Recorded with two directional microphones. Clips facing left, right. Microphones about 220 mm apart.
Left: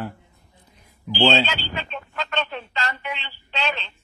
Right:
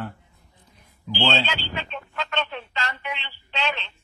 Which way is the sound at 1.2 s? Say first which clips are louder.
Left 5 dB; 40° left (ahead or behind).